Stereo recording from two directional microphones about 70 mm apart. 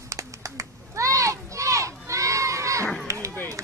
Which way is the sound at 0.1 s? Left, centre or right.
Right.